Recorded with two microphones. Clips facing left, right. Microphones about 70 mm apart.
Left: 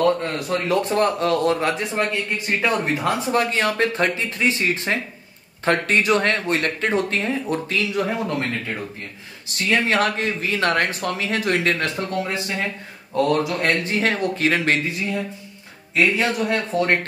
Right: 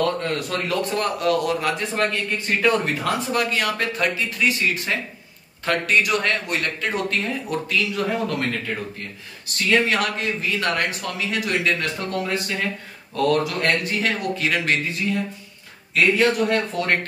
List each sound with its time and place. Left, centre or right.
0.0 s speech: left
2.0 s speech: centre; by 11.9 s left
12.2 s speech: left
13.9 s speech: left
15.9 s speech: left